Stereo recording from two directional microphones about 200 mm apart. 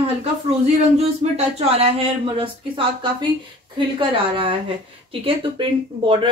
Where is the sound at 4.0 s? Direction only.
25° right (ahead or behind).